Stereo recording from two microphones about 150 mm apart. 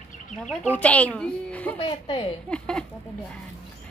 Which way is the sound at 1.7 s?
35° left (ahead or behind).